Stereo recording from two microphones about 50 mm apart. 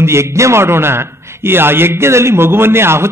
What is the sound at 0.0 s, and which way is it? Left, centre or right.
A man's voice, right.